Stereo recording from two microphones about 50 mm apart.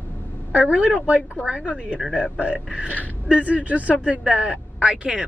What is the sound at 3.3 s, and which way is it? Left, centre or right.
Speech, right.